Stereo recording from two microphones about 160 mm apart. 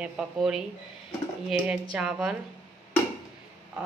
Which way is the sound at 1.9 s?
5° right (ahead or behind).